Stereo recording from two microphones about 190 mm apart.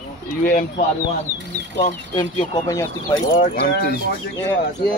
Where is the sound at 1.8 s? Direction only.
25° left (ahead or behind).